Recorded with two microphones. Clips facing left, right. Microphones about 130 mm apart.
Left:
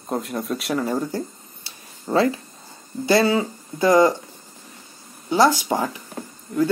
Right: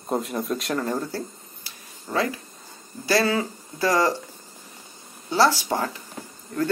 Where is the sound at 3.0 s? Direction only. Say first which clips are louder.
Left 4 dB; 20° left (ahead or behind).